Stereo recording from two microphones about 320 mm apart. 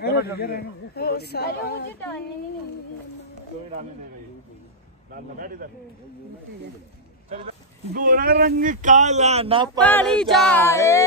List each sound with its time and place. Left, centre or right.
0.0 s a woman's voice: left
5.4 s speech: right
7.2 s speech: centre
9.8 s a sound: centre